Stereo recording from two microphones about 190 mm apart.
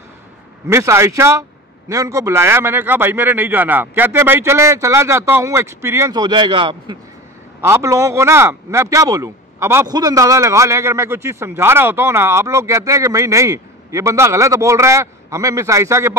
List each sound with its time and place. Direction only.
0.7 s a man's voice: 15° right (ahead or behind)
7.6 s a man's voice: 15° right (ahead or behind)